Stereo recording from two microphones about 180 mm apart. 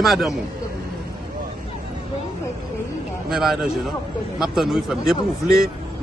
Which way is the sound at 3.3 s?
Centre (ahead or behind).